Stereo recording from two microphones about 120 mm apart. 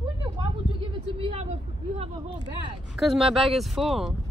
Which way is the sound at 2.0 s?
90° right.